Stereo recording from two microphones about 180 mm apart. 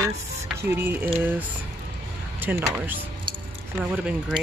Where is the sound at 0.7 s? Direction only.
10° right (ahead or behind).